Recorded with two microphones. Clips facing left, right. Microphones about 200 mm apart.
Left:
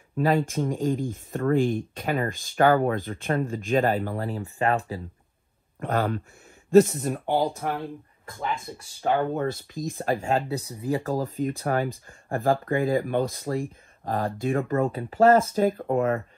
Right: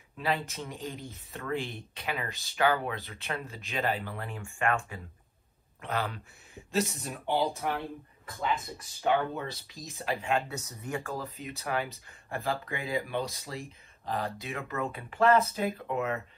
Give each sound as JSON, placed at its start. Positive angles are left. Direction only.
{"t": 0.2, "sound": "speech", "side_deg": 50}
{"t": 5.8, "sound": "speech", "side_deg": 50}
{"t": 9.0, "sound": "speech", "side_deg": 45}